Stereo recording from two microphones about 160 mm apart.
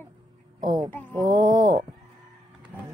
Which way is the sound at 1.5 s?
25° right (ahead or behind).